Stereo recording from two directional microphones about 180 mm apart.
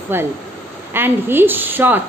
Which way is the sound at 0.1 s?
10° right (ahead or behind).